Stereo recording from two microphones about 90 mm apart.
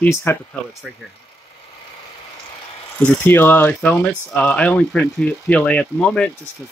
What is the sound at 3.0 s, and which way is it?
Speech, 25° left (ahead or behind).